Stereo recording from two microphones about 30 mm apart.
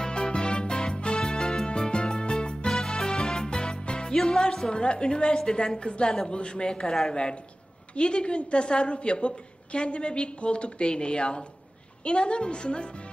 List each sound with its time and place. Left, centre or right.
0.0 s music: left
4.1 s music: centre
4.6 s a woman's voice: left